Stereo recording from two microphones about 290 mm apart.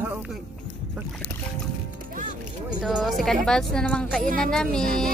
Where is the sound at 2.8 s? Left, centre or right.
Centre.